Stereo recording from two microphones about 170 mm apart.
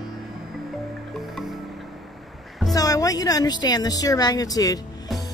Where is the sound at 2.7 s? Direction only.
20° left (ahead or behind).